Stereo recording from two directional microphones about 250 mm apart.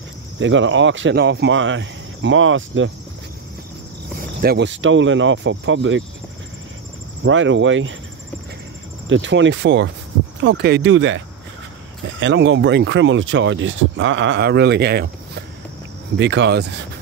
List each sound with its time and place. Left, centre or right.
0.4 s speech: right
4.4 s speech: right
7.2 s speech: right
9.1 s speech: right